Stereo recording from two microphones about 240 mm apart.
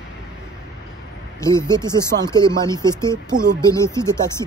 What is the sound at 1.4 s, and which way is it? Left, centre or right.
Speech, centre.